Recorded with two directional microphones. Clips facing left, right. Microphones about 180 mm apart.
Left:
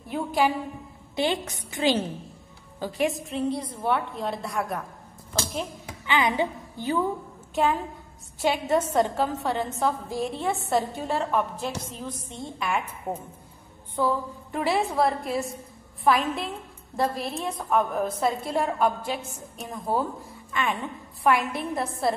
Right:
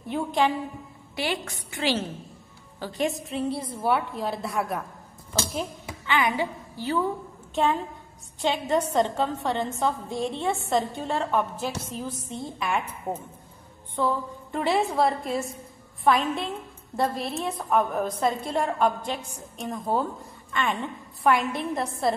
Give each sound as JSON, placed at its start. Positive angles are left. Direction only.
{"t": 0.0, "sound": "a woman's voice", "side_deg": 5}
{"t": 1.1, "sound": "a woman's voice", "side_deg": 20}
{"t": 2.8, "sound": "a woman's voice", "side_deg": 5}
{"t": 6.0, "sound": "a woman's voice", "side_deg": 20}
{"t": 8.4, "sound": "a woman's voice", "side_deg": 5}